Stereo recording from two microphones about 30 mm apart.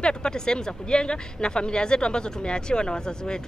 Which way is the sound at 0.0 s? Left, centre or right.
Left.